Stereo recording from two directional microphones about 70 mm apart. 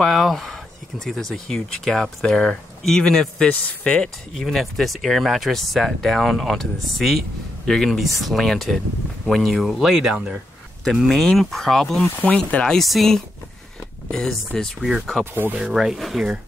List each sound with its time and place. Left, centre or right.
0.0 s speech: centre
4.4 s speech: centre
12.0 s speech: centre
12.7 s speech: centre
14.8 s speech: centre